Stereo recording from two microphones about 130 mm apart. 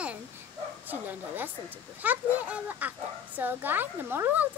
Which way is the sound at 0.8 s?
15° right (ahead or behind).